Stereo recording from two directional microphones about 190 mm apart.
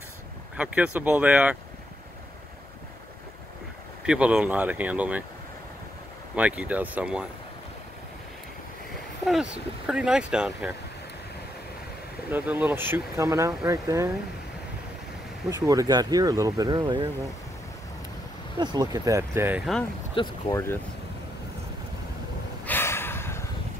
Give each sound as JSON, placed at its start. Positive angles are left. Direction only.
{"t": 0.6, "sound": "speech", "side_deg": -5}
{"t": 4.0, "sound": "speech", "side_deg": -5}
{"t": 6.3, "sound": "speech", "side_deg": -5}
{"t": 9.2, "sound": "speech", "side_deg": 0}
{"t": 12.3, "sound": "speech", "side_deg": -10}
{"t": 15.5, "sound": "speech", "side_deg": -15}
{"t": 18.6, "sound": "speech", "side_deg": -20}
{"t": 20.2, "sound": "speech", "side_deg": 20}
{"t": 22.7, "sound": "a sound", "side_deg": 10}